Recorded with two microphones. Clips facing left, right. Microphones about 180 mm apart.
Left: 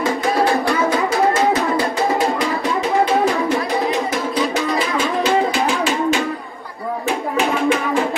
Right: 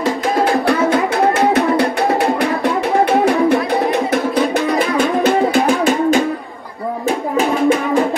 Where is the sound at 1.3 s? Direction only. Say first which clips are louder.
Right 4 dB; 60° right (ahead or behind).